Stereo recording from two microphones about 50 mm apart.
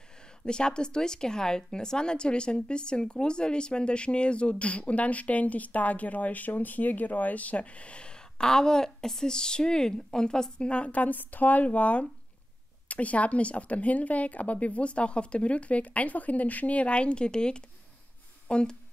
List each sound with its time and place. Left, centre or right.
0.5 s a woman's voice: centre